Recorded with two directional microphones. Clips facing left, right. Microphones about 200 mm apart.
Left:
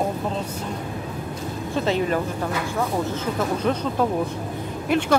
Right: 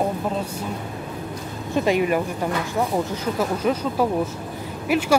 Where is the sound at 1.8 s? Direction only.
15° right (ahead or behind).